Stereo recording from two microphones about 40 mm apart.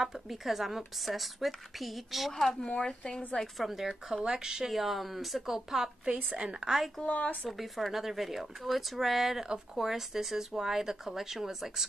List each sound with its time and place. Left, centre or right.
0.0 s speech: centre
2.6 s speech: left
3.5 s speech: centre
4.1 s speech: centre
4.6 s speech: centre
6.3 s a woman's voice: right
7.1 s speech: left
7.4 s speech: centre